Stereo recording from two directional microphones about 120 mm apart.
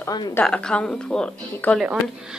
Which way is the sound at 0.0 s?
35° left (ahead or behind).